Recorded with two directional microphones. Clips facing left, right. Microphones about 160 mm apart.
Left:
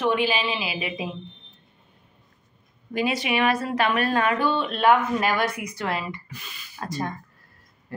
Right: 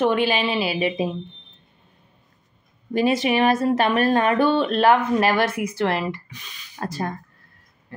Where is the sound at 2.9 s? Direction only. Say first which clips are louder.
Right 5 dB; 35° right (ahead or behind).